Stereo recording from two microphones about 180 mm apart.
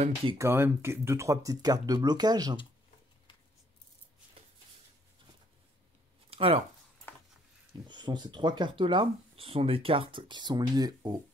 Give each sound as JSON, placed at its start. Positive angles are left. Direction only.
{"t": 0.0, "sound": "speech", "side_deg": -30}
{"t": 0.4, "sound": "speech", "side_deg": -15}
{"t": 6.3, "sound": "speech", "side_deg": -35}
{"t": 7.1, "sound": "a sound", "side_deg": 10}
{"t": 7.9, "sound": "speech", "side_deg": -25}